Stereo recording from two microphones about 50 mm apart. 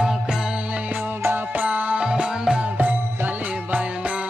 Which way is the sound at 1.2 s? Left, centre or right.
Right.